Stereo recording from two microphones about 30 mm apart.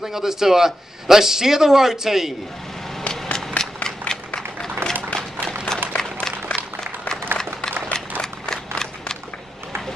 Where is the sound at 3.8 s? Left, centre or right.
Left.